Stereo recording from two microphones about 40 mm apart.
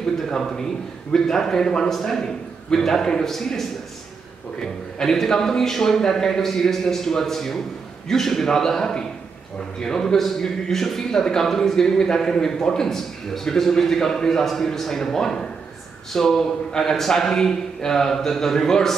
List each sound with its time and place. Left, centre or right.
1.1 s a man's voice: centre
4.6 s a man's voice: centre